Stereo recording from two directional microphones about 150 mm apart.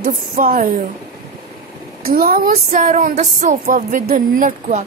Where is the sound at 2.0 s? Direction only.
85° right.